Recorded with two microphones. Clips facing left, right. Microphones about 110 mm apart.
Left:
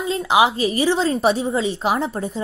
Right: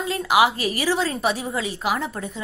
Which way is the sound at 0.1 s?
20° left (ahead or behind).